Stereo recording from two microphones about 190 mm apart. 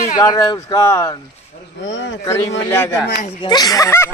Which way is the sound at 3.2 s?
25° left (ahead or behind).